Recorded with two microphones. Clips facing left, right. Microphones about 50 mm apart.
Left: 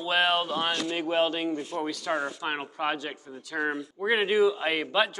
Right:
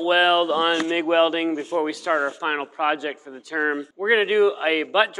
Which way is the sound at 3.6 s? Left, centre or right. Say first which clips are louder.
Right 6 dB; right.